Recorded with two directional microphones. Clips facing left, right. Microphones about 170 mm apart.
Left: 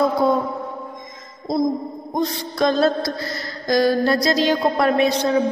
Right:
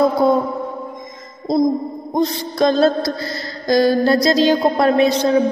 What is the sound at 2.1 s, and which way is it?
Mantra, 30° right (ahead or behind).